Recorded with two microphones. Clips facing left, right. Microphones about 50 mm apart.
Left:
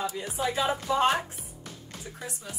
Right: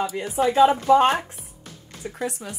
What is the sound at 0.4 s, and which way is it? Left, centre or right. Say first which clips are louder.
Speech: right 11 dB; right.